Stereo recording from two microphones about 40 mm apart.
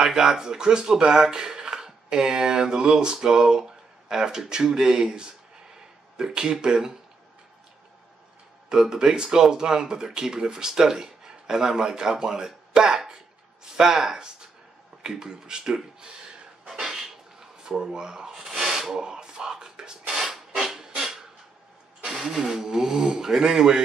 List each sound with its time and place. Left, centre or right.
0.0 s speech: centre
8.6 s speech: centre
16.7 s rub: centre
22.3 s speech: centre